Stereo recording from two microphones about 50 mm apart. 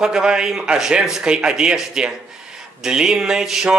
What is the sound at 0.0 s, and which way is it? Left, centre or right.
Speech, centre.